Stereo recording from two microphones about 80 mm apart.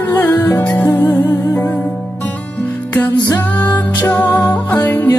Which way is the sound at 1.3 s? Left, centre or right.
Left.